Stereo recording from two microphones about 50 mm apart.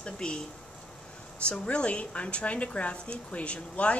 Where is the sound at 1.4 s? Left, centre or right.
Left.